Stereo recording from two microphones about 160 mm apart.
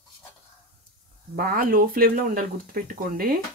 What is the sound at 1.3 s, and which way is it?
Speech, 65° right (ahead or behind).